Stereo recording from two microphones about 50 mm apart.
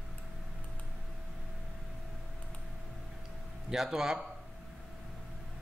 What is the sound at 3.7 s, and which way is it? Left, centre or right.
Speech, centre.